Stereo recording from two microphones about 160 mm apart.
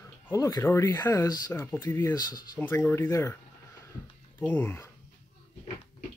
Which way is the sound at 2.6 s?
15° left (ahead or behind).